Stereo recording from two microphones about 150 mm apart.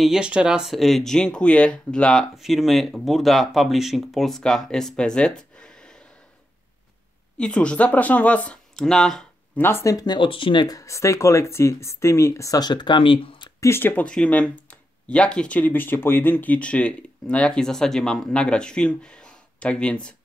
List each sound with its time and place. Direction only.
0.0 s speech: 5° right (ahead or behind)
5.6 s a sound: 5° left (ahead or behind)
7.3 s speech: 5° left (ahead or behind)
9.6 s speech: 15° left (ahead or behind); by 13.5 s 35° left (ahead or behind)
13.6 s speech: 15° left (ahead or behind)